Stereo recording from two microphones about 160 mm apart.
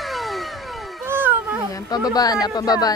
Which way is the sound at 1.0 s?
15° right (ahead or behind).